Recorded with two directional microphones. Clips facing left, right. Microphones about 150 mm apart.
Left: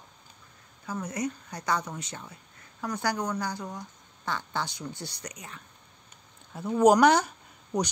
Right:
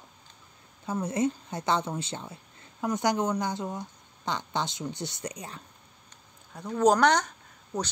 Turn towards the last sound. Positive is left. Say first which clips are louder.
# left 4 dB
turn(degrees=15)  # may be behind; listen again after turning